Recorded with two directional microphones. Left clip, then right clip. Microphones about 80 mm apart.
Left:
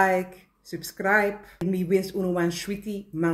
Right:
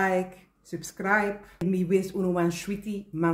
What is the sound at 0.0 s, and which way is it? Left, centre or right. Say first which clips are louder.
Speech: left 4 dB; right.